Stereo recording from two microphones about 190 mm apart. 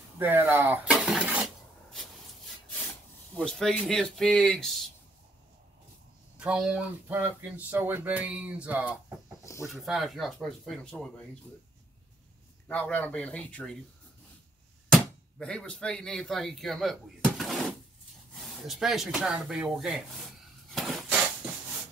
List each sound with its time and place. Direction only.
0.2 s speech: 10° right (ahead or behind)
3.3 s speech: 5° left (ahead or behind)
6.4 s speech: 5° right (ahead or behind)
9.4 s a sound: 15° left (ahead or behind)
9.8 s speech: centre (ahead or behind)
12.6 s speech: 10° left (ahead or behind)
14.9 s speech: 5° left (ahead or behind)
20.7 s a sound: centre (ahead or behind)